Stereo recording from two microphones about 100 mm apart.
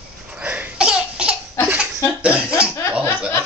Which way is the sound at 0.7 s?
10° right (ahead or behind).